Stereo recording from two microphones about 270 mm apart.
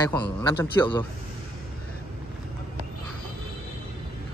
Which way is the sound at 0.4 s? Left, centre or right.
Centre.